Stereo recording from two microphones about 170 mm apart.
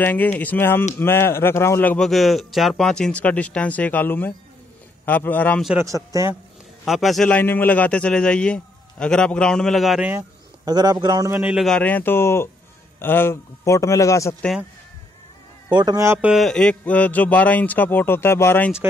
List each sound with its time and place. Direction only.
0.0 s a man's voice: 10° left (ahead or behind)
5.8 s a man's voice: 20° right (ahead or behind)
6.8 s a man's voice: centre (ahead or behind)
10.0 s a man's voice: 20° right (ahead or behind)
11.5 s a man's voice: 5° left (ahead or behind)
15.7 s a man's voice: 25° right (ahead or behind)
16.3 s a man's voice: centre (ahead or behind)